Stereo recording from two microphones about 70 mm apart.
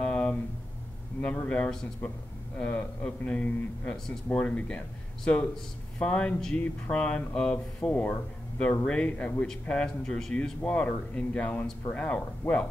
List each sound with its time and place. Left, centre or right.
0.0 s a sound: centre
1.2 s a man's voice: left
10.6 s a man's voice: centre